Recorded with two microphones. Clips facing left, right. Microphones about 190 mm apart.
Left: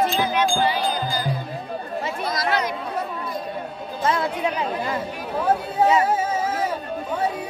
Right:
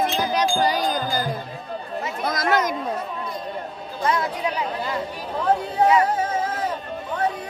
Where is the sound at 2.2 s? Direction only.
50° right (ahead or behind).